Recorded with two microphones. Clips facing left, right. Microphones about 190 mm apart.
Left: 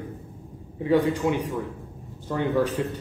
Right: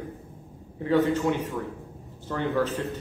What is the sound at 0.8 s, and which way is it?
A man's voice, 15° left (ahead or behind).